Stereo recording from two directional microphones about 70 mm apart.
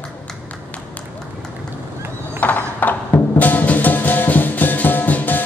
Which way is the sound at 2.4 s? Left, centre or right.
Left.